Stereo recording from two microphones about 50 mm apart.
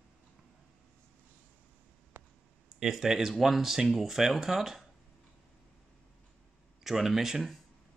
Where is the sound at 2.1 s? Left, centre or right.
Right.